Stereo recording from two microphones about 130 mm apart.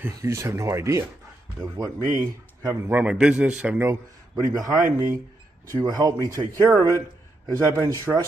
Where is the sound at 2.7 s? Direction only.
15° right (ahead or behind).